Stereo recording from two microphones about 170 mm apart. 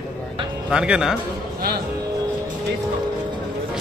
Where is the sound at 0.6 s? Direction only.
5° right (ahead or behind).